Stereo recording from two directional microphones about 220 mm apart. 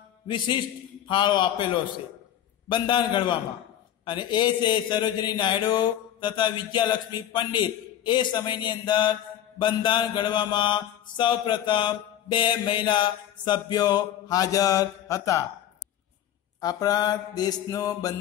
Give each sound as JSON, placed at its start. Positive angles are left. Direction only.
{"t": 1.0, "sound": "mantra", "side_deg": 20}
{"t": 16.6, "sound": "mantra", "side_deg": 15}